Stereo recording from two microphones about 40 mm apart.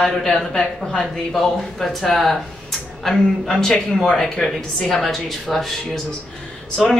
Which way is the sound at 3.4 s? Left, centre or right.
Centre.